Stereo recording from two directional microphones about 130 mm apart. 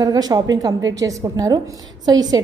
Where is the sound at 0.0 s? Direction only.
30° right (ahead or behind).